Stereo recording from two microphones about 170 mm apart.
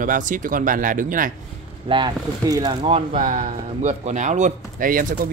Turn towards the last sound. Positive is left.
turn(degrees=-55)  # may be behind; listen again after turning